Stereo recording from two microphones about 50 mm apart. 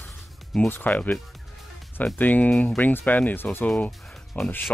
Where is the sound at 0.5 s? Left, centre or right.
Centre.